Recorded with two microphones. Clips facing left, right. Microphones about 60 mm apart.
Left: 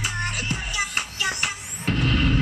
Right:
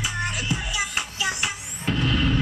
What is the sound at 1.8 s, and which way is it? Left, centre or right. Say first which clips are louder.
Music: even; left.